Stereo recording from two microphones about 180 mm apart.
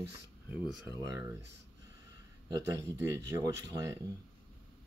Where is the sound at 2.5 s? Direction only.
15° right (ahead or behind).